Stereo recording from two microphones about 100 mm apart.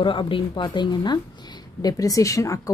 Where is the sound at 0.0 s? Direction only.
60° left (ahead or behind).